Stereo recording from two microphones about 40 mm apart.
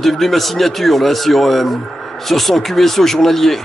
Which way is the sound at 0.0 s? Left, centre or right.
Centre.